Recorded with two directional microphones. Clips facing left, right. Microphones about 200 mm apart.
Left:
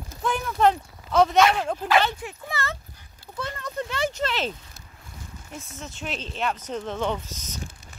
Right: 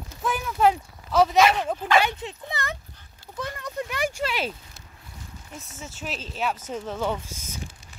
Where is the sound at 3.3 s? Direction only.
15° right (ahead or behind).